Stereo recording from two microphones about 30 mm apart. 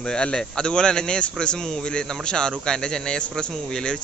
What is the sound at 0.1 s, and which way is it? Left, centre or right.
Speech, left.